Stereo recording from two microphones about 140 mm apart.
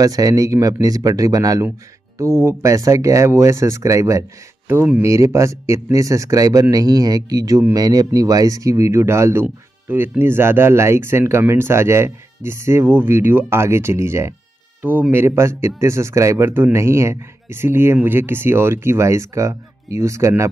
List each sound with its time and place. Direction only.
0.0 s speech: 25° right (ahead or behind)
4.6 s speech: 10° right (ahead or behind)